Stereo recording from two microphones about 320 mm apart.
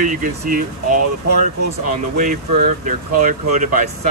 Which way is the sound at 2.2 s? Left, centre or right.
Right.